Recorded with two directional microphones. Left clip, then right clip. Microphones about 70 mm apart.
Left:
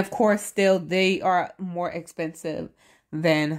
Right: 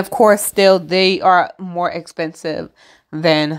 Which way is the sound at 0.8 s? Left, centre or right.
Right.